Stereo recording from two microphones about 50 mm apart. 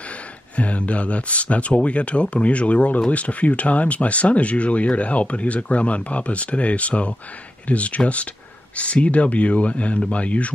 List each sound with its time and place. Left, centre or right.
0.6 s speech: left